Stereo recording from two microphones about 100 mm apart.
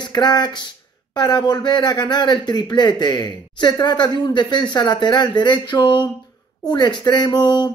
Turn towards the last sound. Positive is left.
turn(degrees=45)  # may be behind; listen again after turning